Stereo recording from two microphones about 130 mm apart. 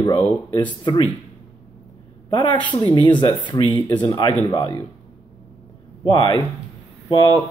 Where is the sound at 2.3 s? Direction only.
35° left (ahead or behind).